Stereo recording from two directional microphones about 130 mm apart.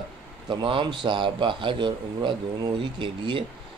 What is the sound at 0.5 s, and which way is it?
A man's voice, 40° right (ahead or behind).